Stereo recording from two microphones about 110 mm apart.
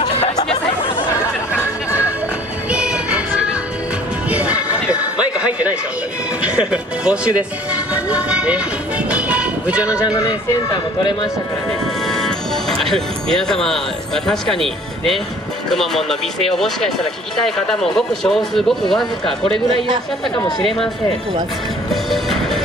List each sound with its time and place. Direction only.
1.5 s music: 15° right (ahead or behind)
6.4 s speech: 10° right (ahead or behind)
7.9 s a sound: 10° right (ahead or behind)
10.1 s speech: 30° left (ahead or behind)
12.1 s speech: 5° left (ahead or behind)
20.3 s speech: 40° left (ahead or behind)
22.1 s music: centre (ahead or behind)